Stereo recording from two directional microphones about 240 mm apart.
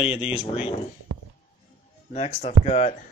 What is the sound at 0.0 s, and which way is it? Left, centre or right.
Speech, left.